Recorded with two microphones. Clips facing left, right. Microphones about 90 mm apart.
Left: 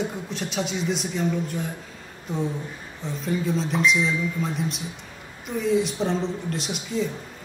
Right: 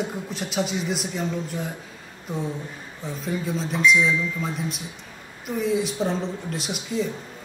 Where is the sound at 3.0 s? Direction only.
Centre (ahead or behind).